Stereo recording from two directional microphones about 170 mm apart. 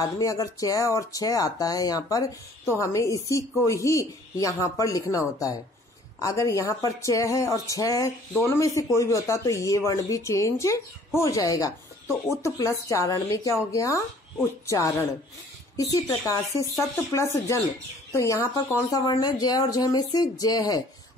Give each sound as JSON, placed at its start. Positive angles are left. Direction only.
{"t": 0.0, "sound": "speech", "side_deg": 20}
{"t": 6.2, "sound": "speech", "side_deg": 20}